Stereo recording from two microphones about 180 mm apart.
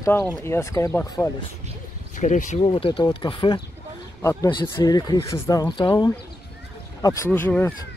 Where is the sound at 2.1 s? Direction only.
45° left (ahead or behind).